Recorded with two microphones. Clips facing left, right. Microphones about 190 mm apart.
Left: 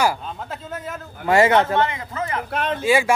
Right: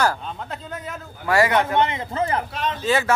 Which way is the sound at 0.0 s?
5° left (ahead or behind).